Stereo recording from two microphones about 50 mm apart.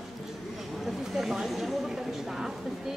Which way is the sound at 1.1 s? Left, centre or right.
Centre.